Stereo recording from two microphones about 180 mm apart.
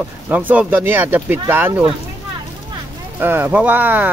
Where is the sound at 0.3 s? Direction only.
10° right (ahead or behind).